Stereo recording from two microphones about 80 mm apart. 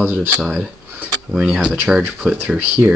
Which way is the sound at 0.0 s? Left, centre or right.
Right.